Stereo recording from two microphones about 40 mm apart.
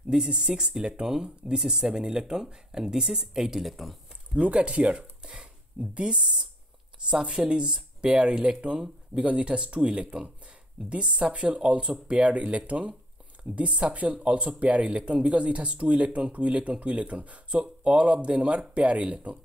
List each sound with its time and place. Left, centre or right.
0.1 s speech: right
3.6 s speech: centre
4.4 s speech: right